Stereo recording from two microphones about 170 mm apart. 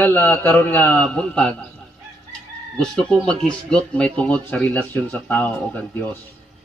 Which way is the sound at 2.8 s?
5° left (ahead or behind).